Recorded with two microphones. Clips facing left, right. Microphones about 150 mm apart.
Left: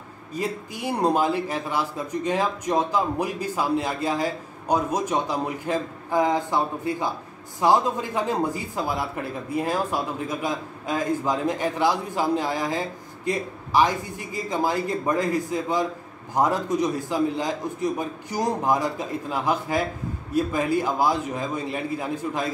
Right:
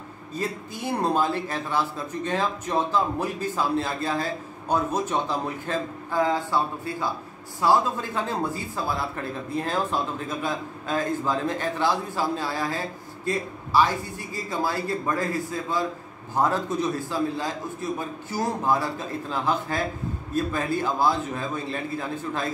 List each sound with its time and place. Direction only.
0.3 s speech: 15° left (ahead or behind)